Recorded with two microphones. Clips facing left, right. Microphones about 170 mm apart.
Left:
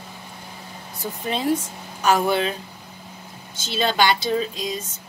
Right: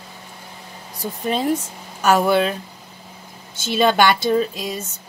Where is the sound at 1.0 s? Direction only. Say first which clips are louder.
Right 4 dB; 40° right (ahead or behind).